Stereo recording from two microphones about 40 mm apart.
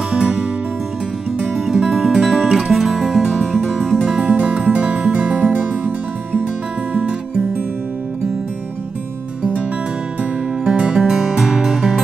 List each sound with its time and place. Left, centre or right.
0.1 s music: right
1.5 s music: centre
3.7 s music: centre
10.6 s music: centre